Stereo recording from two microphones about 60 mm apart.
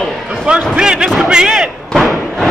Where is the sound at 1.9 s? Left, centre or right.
Centre.